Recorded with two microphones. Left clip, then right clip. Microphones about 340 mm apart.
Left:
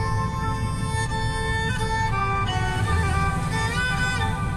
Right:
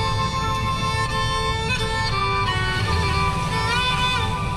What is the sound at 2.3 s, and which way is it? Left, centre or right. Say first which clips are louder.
Music: right 3 dB; right.